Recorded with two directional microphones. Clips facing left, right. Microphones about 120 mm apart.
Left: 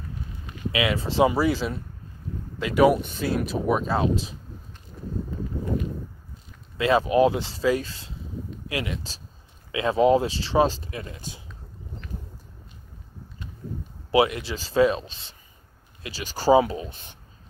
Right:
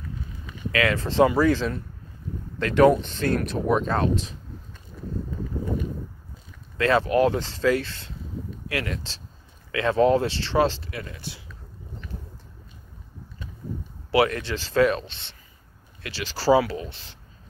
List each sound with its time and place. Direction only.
0.7 s speech: 10° left (ahead or behind)
6.8 s speech: 15° left (ahead or behind)
10.9 s speech: 25° left (ahead or behind)
14.1 s speech: 15° left (ahead or behind)
16.0 s speech: 15° left (ahead or behind)